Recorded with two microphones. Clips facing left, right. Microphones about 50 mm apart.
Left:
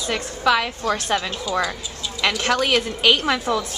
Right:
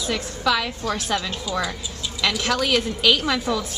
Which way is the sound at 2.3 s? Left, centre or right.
Centre.